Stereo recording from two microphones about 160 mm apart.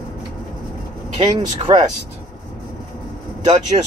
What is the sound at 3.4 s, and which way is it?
Speech, 45° right (ahead or behind).